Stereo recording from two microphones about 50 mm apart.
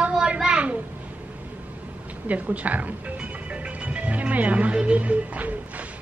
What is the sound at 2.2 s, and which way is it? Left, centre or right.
Speech, right.